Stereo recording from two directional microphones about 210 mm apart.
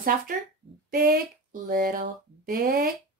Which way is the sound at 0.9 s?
45° right (ahead or behind).